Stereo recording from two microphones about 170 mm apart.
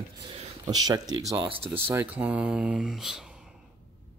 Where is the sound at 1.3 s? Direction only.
10° right (ahead or behind).